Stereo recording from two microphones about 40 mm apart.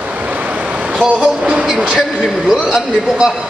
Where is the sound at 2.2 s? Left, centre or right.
Centre.